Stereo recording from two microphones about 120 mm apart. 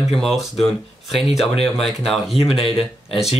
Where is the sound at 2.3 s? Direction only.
50° left (ahead or behind).